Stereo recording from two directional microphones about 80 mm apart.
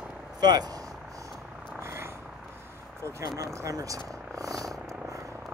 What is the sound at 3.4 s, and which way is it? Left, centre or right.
Purr, right.